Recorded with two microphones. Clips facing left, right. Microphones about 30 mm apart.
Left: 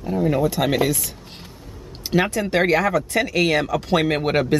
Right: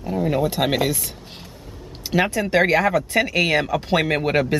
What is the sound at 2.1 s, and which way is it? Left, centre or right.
Speech, centre.